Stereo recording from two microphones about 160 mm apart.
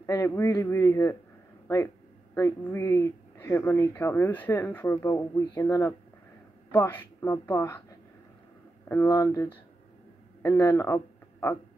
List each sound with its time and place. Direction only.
0.0 s speech: 15° left (ahead or behind)
2.3 s speech: 15° left (ahead or behind)
8.8 s speech: 15° left (ahead or behind)